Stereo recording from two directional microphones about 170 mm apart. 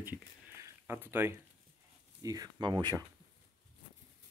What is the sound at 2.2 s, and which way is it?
Speech, 20° right (ahead or behind).